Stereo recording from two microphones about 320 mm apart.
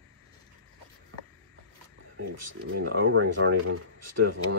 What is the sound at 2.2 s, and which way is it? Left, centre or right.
Speech, right.